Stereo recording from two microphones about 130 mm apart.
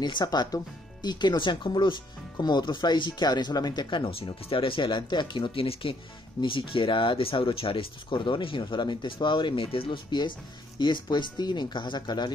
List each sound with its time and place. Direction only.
0.0 s speech: 35° left (ahead or behind)